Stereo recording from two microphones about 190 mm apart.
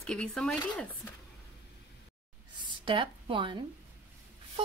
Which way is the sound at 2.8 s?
25° right (ahead or behind).